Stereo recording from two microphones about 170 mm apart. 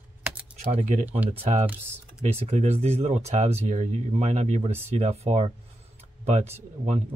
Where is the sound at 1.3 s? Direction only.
40° right (ahead or behind).